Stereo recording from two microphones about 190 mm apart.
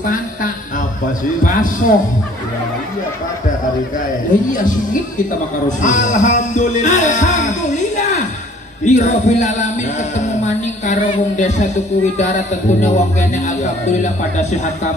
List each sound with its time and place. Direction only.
1.4 s speech: 45° left (ahead or behind)
5.7 s a man's voice: 40° left (ahead or behind)
8.8 s music: 40° left (ahead or behind)